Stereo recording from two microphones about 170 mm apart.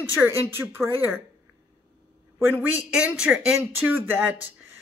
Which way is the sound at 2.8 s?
5° right (ahead or behind).